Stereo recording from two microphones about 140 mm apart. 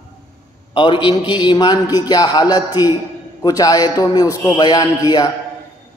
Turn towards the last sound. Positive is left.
turn(degrees=30)  # may be behind; listen again after turning